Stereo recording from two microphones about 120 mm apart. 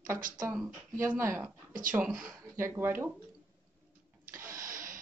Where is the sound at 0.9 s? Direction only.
20° right (ahead or behind).